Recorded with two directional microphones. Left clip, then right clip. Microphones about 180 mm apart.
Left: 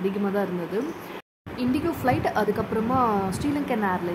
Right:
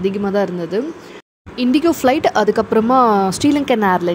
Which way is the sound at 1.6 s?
45° right (ahead or behind).